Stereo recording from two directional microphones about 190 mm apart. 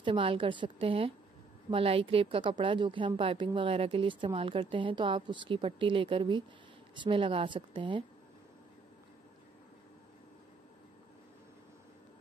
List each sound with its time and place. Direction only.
0.0 s a woman's voice: 25° right (ahead or behind)